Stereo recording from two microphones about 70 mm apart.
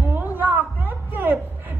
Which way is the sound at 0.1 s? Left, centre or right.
Right.